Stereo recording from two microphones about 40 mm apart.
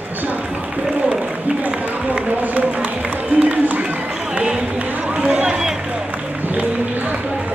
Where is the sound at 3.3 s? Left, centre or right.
Right.